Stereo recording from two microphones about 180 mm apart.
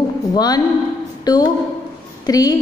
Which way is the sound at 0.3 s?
20° left (ahead or behind).